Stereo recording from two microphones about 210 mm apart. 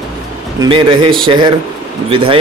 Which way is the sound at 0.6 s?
25° right (ahead or behind).